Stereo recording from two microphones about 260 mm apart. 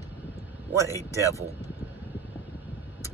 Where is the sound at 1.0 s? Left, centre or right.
Centre.